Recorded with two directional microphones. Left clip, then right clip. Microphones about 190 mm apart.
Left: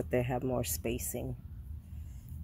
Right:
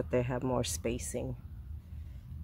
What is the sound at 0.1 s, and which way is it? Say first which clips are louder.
Speech: even; 5° right (ahead or behind).